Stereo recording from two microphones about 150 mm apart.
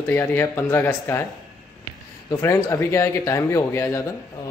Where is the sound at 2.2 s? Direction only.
20° left (ahead or behind).